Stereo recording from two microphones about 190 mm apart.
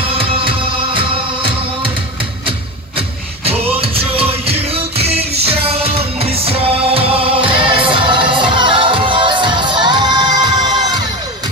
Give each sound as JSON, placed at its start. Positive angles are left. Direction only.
{"t": 0.1, "sound": "music", "side_deg": -30}
{"t": 3.4, "sound": "music", "side_deg": -30}